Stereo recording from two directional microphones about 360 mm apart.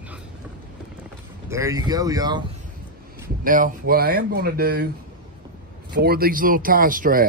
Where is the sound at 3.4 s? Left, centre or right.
Right.